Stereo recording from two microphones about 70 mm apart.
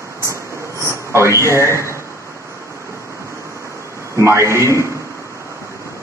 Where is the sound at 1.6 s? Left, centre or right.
Right.